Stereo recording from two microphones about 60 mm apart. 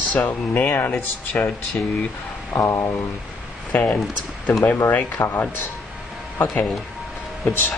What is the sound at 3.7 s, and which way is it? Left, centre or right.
Speech, left.